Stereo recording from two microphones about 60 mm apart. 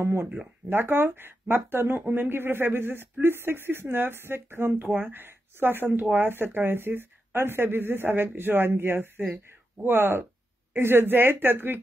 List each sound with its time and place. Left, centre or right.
0.0 s speech: right